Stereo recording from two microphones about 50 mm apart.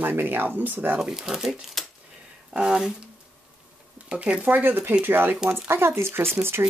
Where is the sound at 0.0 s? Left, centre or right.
Right.